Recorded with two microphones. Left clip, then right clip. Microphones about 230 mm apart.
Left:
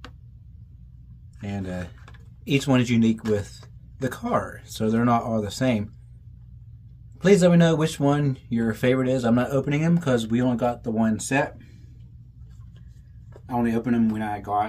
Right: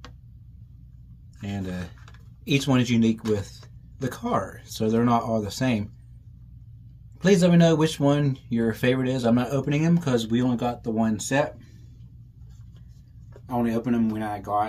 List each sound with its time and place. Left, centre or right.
1.4 s speech: centre
7.2 s speech: centre
13.3 s speech: centre